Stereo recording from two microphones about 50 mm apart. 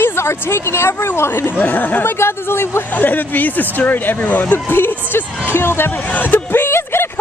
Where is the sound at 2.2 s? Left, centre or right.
Left.